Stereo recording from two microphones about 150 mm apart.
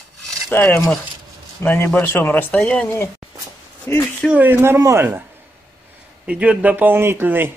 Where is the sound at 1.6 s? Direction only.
15° left (ahead or behind).